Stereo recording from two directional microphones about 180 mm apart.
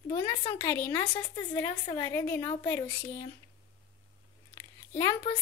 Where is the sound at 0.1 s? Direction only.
30° left (ahead or behind).